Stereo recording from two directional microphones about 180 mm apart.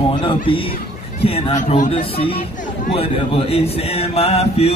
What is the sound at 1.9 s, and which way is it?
Speech, 30° left (ahead or behind).